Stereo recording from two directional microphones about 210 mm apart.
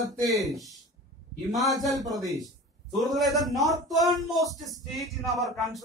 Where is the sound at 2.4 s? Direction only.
Centre (ahead or behind).